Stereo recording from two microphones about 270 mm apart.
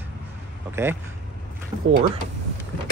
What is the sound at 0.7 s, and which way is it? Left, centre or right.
Speech, centre.